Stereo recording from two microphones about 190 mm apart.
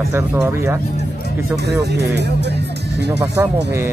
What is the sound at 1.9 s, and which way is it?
Speech, 60° right (ahead or behind).